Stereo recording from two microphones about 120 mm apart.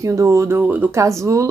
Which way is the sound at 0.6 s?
15° right (ahead or behind).